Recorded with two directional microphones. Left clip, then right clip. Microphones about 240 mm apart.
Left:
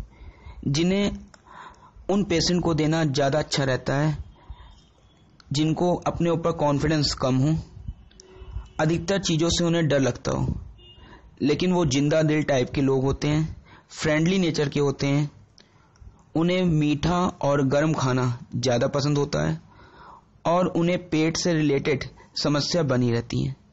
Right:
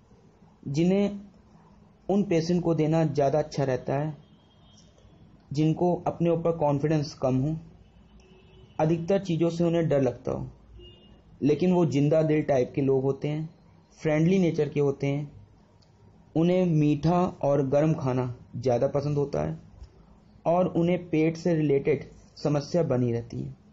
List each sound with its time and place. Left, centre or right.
0.7 s a man's voice: left
5.5 s a man's voice: left
8.7 s a man's voice: left
11.4 s a man's voice: left
16.3 s a man's voice: left